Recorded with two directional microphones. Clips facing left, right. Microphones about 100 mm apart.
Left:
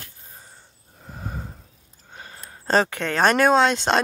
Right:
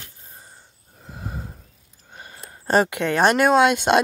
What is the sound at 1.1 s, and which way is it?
Wheeze, 5° right (ahead or behind).